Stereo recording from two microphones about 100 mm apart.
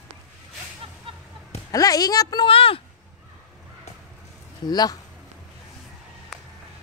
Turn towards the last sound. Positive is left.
turn(degrees=40)  # may be behind; listen again after turning